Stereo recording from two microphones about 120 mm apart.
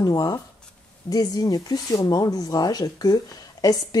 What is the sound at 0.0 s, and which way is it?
Speech, 30° left (ahead or behind).